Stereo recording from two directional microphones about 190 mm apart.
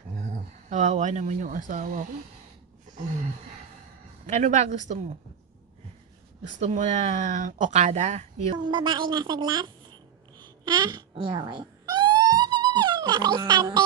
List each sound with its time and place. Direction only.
0.7 s speech: 40° right (ahead or behind)
4.3 s speech: 35° right (ahead or behind)
6.6 s speech: 40° right (ahead or behind)
8.6 s speech: 25° right (ahead or behind)
10.4 s cat: 20° right (ahead or behind)